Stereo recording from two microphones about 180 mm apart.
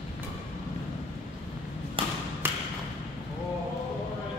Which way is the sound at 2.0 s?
30° right (ahead or behind).